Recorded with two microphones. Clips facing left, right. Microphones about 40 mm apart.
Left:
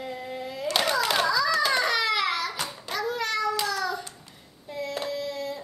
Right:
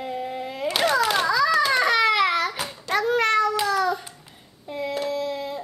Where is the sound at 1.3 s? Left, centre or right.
Centre.